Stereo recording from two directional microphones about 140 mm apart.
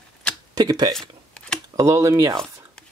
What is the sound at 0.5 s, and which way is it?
Speech, 30° right (ahead or behind).